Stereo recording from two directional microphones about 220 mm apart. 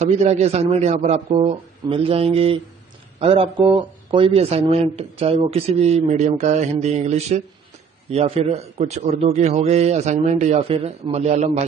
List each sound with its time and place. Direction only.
0.0 s speech: 30° right (ahead or behind)